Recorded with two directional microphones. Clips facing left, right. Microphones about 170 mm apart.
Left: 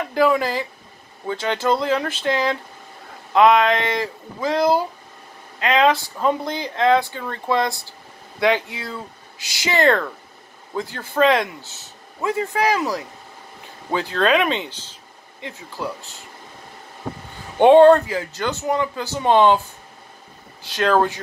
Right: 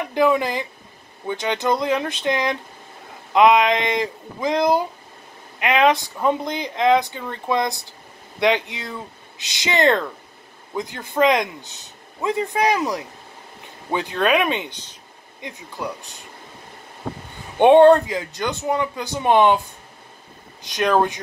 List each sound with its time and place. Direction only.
0.0 s speech: 20° right (ahead or behind)
15.8 s speech: 15° right (ahead or behind)
17.6 s speech: 20° right (ahead or behind)
20.6 s speech: 15° right (ahead or behind)